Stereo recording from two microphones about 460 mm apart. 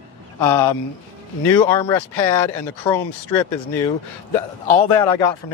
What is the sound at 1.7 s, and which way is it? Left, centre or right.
Speech, centre.